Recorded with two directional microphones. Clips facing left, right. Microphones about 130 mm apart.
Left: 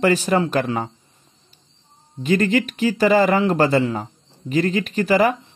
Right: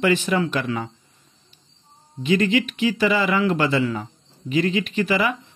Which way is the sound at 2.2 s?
45° left (ahead or behind).